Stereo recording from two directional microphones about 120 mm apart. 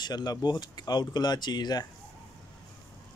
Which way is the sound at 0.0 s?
35° left (ahead or behind).